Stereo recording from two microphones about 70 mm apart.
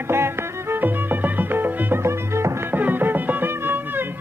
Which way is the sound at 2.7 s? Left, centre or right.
Right.